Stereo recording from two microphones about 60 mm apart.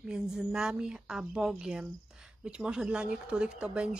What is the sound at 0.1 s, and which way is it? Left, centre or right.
Speech, centre.